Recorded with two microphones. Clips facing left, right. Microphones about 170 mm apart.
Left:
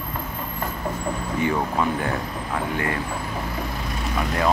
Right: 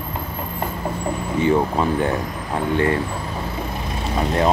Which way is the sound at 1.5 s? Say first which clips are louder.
Right 6 dB; 25° right (ahead or behind).